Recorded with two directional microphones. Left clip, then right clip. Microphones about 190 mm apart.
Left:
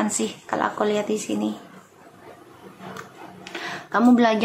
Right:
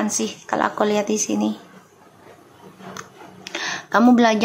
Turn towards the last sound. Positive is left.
turn(degrees=-20)  # may be behind; listen again after turning